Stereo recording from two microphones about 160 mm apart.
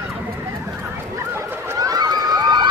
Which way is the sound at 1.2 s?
15° right (ahead or behind).